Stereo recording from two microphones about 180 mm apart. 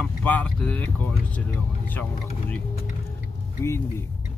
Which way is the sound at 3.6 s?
15° left (ahead or behind).